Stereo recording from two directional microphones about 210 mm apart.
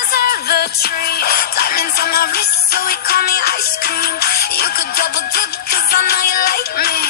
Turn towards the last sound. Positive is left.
turn(degrees=45)  # may be behind; listen again after turning